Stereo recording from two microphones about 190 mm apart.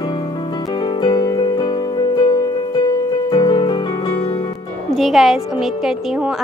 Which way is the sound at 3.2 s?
20° left (ahead or behind).